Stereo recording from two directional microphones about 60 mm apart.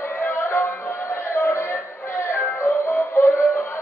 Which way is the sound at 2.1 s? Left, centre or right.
Left.